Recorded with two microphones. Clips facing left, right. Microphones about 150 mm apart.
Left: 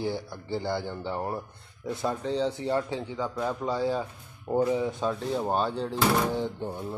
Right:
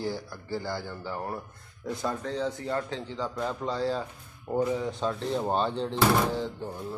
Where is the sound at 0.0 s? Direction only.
20° left (ahead or behind).